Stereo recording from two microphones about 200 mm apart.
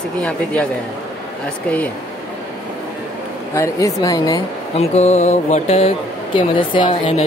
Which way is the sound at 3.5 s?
15° left (ahead or behind).